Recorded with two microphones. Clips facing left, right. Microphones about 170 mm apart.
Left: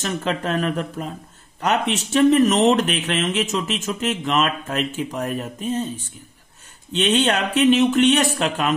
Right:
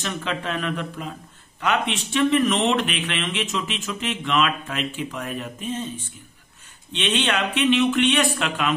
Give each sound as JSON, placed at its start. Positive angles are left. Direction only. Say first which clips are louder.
{"t": 0.0, "sound": "speech", "louder": "left 4 dB", "side_deg": 40}
{"t": 6.9, "sound": "speech", "louder": "left 5 dB", "side_deg": 40}